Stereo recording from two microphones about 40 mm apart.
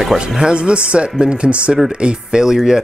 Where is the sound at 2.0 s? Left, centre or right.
Centre.